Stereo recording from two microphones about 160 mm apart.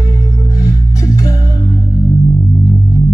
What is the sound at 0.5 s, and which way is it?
Music, 20° left (ahead or behind).